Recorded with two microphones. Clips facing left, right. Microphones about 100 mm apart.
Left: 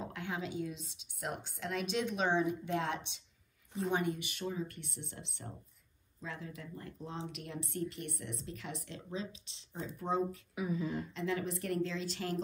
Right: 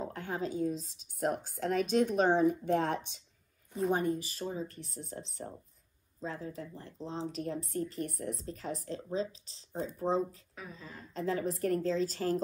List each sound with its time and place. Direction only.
0.1 s a woman's voice: 40° right (ahead or behind)
10.5 s speech: 10° left (ahead or behind)
11.1 s speech: 35° right (ahead or behind)